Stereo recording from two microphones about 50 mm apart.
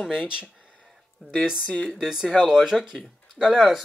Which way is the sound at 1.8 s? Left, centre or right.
Centre.